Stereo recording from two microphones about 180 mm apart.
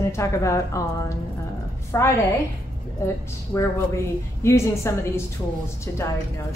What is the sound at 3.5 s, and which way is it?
A woman's voice, 15° left (ahead or behind).